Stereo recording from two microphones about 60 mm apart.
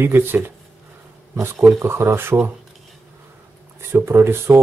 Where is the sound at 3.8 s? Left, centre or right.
Right.